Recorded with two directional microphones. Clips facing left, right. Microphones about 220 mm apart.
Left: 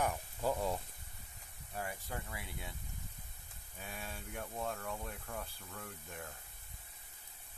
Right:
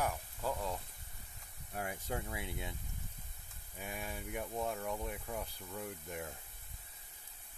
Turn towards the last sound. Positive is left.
turn(degrees=-15)  # may be behind; listen again after turning